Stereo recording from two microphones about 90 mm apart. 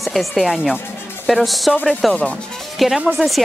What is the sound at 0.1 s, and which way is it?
Speech, centre (ahead or behind).